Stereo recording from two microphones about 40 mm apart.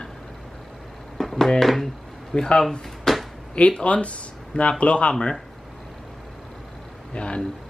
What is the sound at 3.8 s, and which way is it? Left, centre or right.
Speech, left.